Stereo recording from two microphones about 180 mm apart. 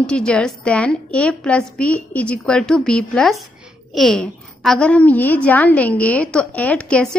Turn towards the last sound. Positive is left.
turn(degrees=5)  # may be behind; listen again after turning